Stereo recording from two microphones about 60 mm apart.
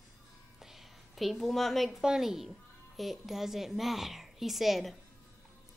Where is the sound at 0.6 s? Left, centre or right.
Centre.